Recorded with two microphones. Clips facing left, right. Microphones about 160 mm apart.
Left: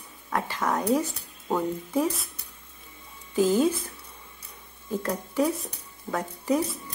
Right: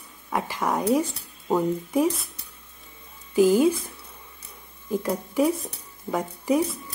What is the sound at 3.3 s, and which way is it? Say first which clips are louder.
Speech: right 4 dB; 10° right (ahead or behind).